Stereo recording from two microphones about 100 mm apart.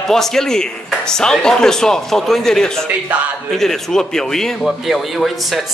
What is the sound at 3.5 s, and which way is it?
A man's voice, 5° left (ahead or behind).